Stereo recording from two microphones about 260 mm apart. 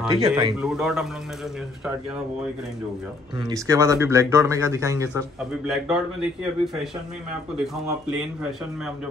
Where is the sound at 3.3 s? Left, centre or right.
Centre.